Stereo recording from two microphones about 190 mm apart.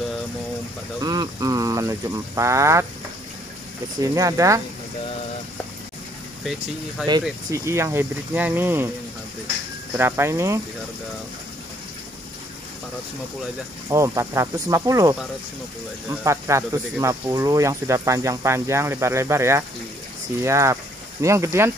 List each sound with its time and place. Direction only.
1.0 s speech: 20° right (ahead or behind)
4.0 s speech: 15° right (ahead or behind)
7.0 s speech: centre (ahead or behind)
7.5 s speech: 15° right (ahead or behind)
9.9 s speech: 10° right (ahead or behind)
13.8 s speech: 15° right (ahead or behind)